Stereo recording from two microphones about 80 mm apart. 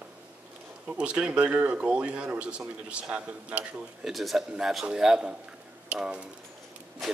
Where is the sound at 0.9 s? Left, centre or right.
Centre.